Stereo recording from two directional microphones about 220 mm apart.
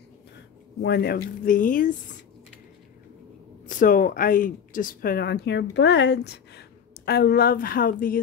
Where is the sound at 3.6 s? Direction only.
40° left (ahead or behind).